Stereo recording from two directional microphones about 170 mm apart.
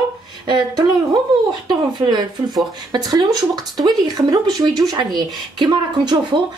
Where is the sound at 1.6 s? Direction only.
25° right (ahead or behind).